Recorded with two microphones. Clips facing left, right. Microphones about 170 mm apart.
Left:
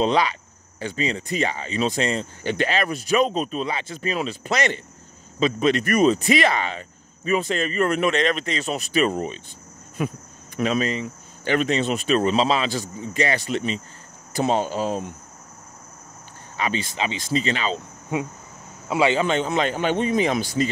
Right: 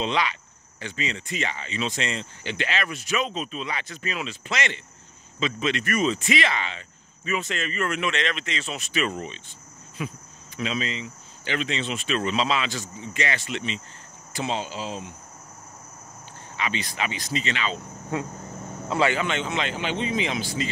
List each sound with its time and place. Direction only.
0.0 s speech: 40° left (ahead or behind)
3.7 s speech: 30° left (ahead or behind); by 15.1 s 50° left (ahead or behind)
16.5 s speech: 40° left (ahead or behind)
16.8 s speech: 25° left (ahead or behind)
18.1 s a man's voice: 15° left (ahead or behind)
19.1 s speech: 35° left (ahead or behind)